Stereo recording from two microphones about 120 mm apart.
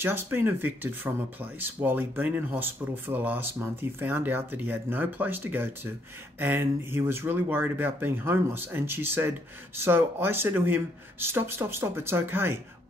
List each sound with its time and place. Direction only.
0.0 s speech: 20° right (ahead or behind)